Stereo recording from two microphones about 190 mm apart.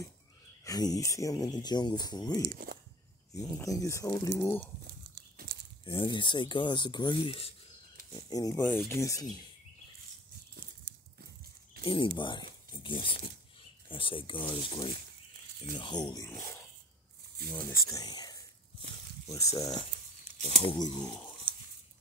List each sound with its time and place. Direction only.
0.7 s speech: 20° left (ahead or behind)
2.5 s speech: 55° right (ahead or behind)
3.3 s speech: 15° left (ahead or behind)
5.9 s speech: 25° left (ahead or behind)
8.2 s speech: 20° left (ahead or behind)
11.8 s speech: 25° left (ahead or behind)
15.7 s speech: 20° left (ahead or behind)